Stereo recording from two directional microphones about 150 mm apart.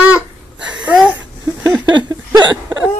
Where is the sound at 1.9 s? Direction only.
30° right (ahead or behind).